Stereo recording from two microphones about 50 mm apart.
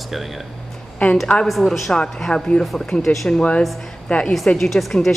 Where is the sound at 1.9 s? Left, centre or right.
Centre.